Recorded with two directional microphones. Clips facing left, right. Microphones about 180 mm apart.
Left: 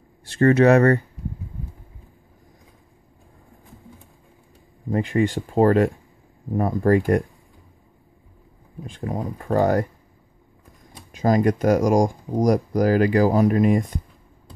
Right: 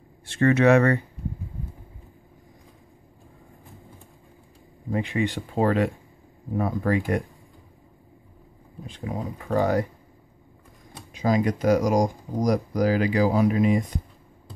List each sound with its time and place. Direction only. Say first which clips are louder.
0.2 s speech: left 4 dB; 35° left (ahead or behind)
4.9 s speech: left 4 dB; 45° left (ahead or behind)
8.8 s speech: left 3 dB; 50° left (ahead or behind)
11.1 s speech: left 4 dB; 50° left (ahead or behind)